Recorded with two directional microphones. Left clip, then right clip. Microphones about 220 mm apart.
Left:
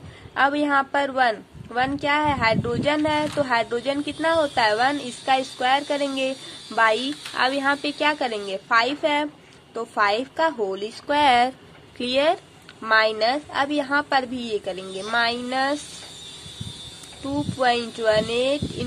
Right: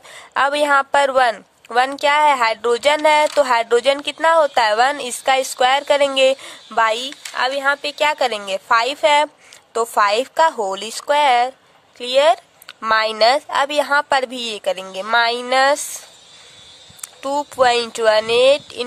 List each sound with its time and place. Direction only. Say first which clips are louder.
0.3 s a woman's voice: right 5 dB; 45° right (ahead or behind)
17.3 s a woman's voice: right 6 dB; 45° right (ahead or behind)